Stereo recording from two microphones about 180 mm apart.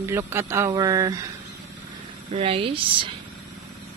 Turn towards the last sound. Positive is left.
turn(degrees=-30)  # may be behind; listen again after turning